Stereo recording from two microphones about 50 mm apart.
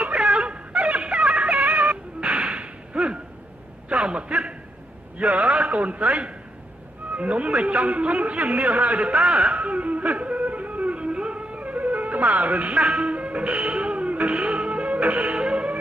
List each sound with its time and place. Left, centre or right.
0.0 s a sound: right
5.2 s a man's voice: right
12.9 s music: right
15.3 s music: centre